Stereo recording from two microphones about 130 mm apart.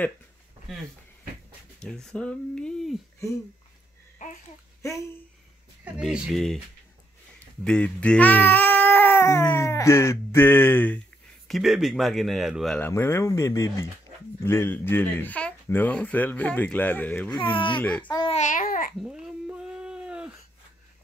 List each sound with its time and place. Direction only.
1.8 s speech: 5° left (ahead or behind)
5.9 s speech: 5° right (ahead or behind)
7.6 s speech: 10° left (ahead or behind)
11.4 s speech: centre (ahead or behind)
12.7 s speech: 15° left (ahead or behind)
17.4 s speech: 40° left (ahead or behind)
17.8 s speech: 10° left (ahead or behind)
18.3 s babbling: 80° left
18.9 s a sound: 5° right (ahead or behind)